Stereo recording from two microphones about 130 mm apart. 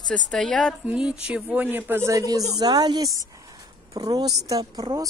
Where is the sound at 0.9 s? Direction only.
10° right (ahead or behind).